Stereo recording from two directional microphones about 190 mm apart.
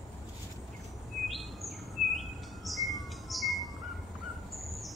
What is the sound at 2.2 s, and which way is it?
Bird, centre (ahead or behind).